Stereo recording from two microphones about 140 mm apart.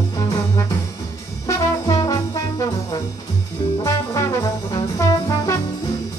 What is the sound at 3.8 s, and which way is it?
Brass instrument, 25° left (ahead or behind).